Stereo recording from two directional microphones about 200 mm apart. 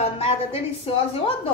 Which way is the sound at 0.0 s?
30° left (ahead or behind).